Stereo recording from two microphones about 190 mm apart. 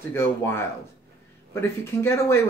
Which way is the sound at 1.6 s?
10° left (ahead or behind).